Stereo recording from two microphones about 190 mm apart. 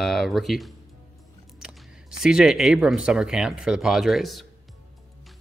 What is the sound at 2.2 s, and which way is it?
Speech, 5° right (ahead or behind).